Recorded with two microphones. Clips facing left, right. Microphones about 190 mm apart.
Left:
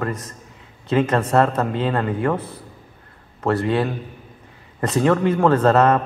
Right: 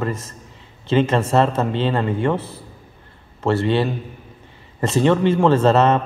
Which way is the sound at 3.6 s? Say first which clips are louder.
Right 1 dB; centre (ahead or behind).